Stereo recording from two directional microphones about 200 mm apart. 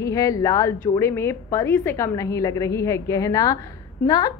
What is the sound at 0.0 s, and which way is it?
A woman's voice, 15° left (ahead or behind).